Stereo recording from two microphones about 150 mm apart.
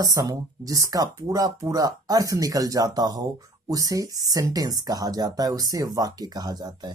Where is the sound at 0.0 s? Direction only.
25° right (ahead or behind).